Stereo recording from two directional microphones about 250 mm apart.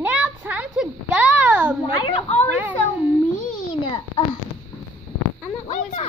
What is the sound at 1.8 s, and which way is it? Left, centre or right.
Speech, left.